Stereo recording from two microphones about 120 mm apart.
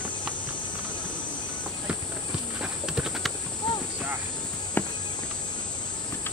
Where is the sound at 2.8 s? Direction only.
5° right (ahead or behind).